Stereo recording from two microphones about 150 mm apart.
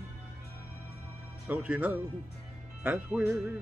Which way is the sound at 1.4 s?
10° right (ahead or behind).